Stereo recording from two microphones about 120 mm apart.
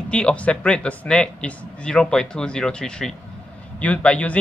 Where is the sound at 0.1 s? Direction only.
10° left (ahead or behind).